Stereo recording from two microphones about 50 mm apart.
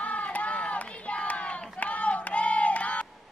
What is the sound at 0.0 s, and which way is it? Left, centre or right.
Crowd, left.